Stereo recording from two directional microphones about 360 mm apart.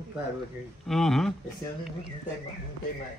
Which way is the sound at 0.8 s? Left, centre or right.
Centre.